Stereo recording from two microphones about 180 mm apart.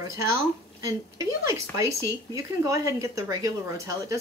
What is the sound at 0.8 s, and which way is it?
Speech, 20° right (ahead or behind).